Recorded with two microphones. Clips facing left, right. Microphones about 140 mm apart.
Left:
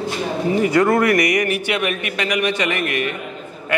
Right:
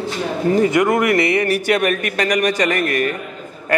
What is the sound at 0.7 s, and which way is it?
A man's voice, 20° right (ahead or behind).